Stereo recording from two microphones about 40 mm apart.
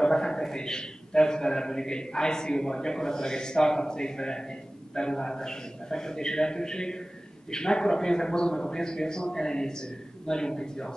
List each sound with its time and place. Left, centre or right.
0.0 s a man's voice: centre